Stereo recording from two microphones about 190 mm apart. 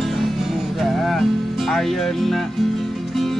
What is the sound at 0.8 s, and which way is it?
Music, centre (ahead or behind).